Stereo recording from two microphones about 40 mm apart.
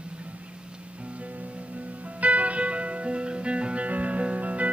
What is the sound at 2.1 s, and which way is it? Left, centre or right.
Music, right.